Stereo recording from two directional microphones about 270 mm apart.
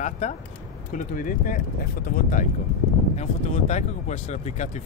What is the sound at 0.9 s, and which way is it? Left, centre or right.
Speech, left.